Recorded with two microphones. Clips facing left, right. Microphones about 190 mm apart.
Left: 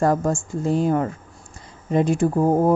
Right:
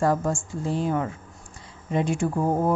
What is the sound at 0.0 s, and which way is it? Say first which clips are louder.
Speech: left 3 dB; 45° left (ahead or behind).